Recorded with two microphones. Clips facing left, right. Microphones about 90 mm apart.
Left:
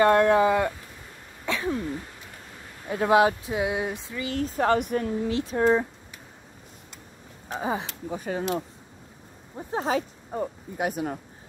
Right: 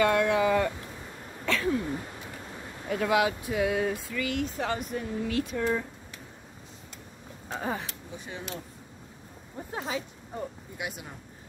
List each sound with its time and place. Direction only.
0.0 s speech: 40° left (ahead or behind)
0.5 s speech: 20° left (ahead or behind)
1.4 s a sound: 15° left (ahead or behind)
2.9 s speech: 30° left (ahead or behind)
4.4 s speech: 40° left (ahead or behind)
4.6 s speech: 60° left (ahead or behind)
5.2 s speech: 35° left (ahead or behind)
7.5 s speech: 10° left (ahead or behind)
8.1 s speech: 45° left (ahead or behind)
9.8 s speech: 40° left (ahead or behind)